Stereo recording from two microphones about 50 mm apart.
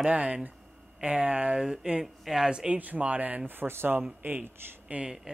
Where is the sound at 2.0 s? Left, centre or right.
Centre.